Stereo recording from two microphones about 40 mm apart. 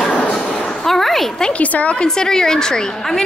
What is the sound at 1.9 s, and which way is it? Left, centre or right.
A woman's voice, centre.